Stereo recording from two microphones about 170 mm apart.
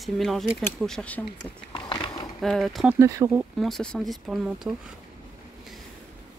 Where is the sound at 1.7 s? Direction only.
30° left (ahead or behind).